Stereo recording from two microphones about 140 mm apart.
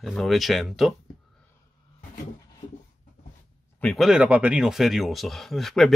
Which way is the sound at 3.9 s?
5° right (ahead or behind).